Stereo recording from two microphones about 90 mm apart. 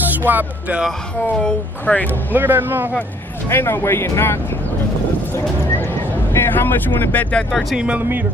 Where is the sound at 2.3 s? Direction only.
25° right (ahead or behind).